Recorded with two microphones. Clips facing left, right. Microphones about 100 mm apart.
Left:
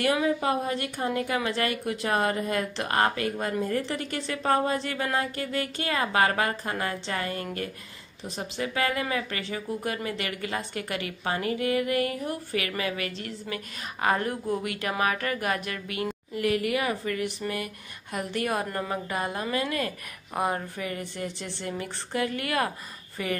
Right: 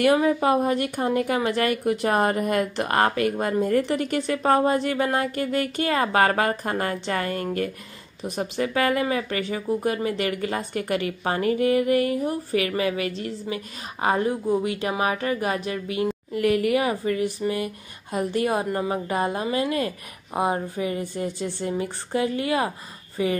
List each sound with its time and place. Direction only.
0.1 s a woman's voice: 40° right (ahead or behind)
2.3 s speech: 55° right (ahead or behind)
2.9 s a woman's voice: 35° right (ahead or behind)
14.0 s a woman's voice: 20° right (ahead or behind)
16.3 s speech: 40° right (ahead or behind); by 21.0 s 25° right (ahead or behind)
21.2 s speech: 35° right (ahead or behind)
22.1 s speech: 25° right (ahead or behind)